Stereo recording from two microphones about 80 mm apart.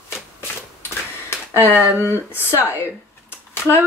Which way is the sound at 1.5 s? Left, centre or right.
Right.